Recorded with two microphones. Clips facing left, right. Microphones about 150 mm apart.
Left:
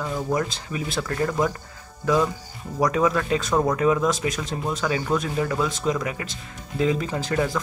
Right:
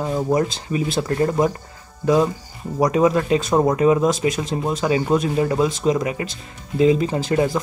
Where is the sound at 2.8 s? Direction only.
25° right (ahead or behind).